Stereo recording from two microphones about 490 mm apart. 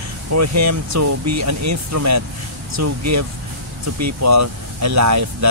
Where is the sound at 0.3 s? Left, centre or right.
Right.